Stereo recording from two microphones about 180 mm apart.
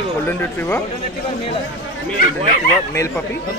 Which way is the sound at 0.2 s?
10° left (ahead or behind).